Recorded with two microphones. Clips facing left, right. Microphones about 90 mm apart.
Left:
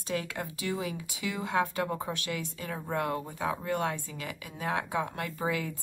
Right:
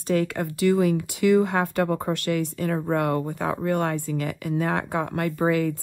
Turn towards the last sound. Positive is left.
turn(degrees=-50)  # may be behind; listen again after turning